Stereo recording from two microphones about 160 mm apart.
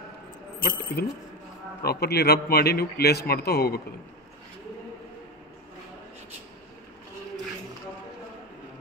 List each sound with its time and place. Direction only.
0.6 s speech: 70° left (ahead or behind)
1.8 s a man's voice: 85° left